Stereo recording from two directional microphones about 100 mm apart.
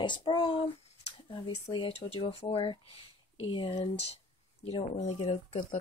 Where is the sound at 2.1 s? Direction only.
70° left (ahead or behind).